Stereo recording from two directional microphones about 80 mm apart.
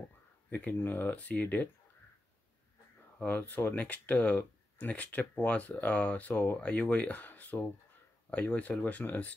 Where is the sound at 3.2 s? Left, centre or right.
Left.